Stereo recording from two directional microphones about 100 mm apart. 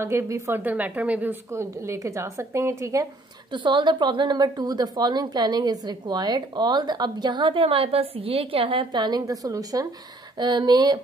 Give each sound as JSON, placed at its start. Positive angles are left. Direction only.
{"t": 0.0, "sound": "a woman's voice", "side_deg": -25}
{"t": 1.5, "sound": "a woman's voice", "side_deg": -30}
{"t": 3.5, "sound": "a woman's voice", "side_deg": -50}